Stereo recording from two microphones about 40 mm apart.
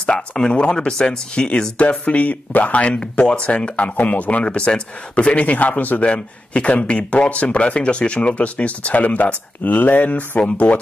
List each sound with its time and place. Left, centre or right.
0.0 s speech: left